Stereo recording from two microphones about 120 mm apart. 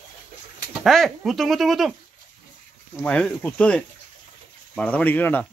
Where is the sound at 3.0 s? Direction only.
10° left (ahead or behind).